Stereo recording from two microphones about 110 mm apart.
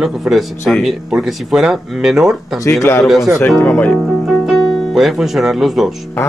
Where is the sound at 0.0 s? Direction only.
Centre (ahead or behind).